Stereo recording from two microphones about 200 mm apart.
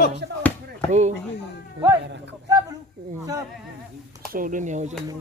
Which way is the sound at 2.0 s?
60° right (ahead or behind).